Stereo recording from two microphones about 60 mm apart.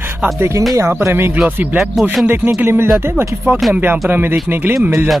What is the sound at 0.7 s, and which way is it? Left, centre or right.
Speech, right.